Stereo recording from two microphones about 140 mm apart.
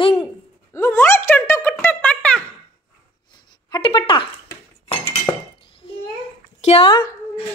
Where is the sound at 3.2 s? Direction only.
30° left (ahead or behind).